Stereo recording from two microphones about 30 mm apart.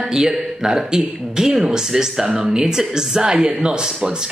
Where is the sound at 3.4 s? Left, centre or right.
Right.